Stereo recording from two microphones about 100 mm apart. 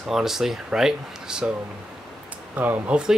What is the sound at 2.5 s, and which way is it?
Speech, 15° right (ahead or behind).